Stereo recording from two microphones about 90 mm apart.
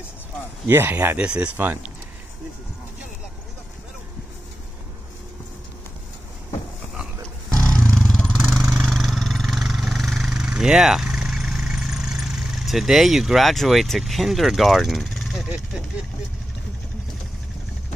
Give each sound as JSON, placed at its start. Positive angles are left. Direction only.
{"t": 0.7, "sound": "speech", "side_deg": -25}
{"t": 1.1, "sound": "speech", "side_deg": -10}
{"t": 7.6, "sound": "vehicle", "side_deg": 15}